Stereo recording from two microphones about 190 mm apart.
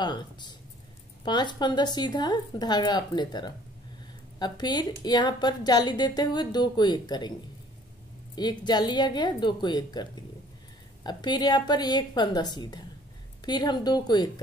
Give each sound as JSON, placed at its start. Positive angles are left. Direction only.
{"t": 0.0, "sound": "a woman's voice", "side_deg": 25}
{"t": 8.4, "sound": "a woman's voice", "side_deg": 20}
{"t": 11.1, "sound": "a woman's voice", "side_deg": 20}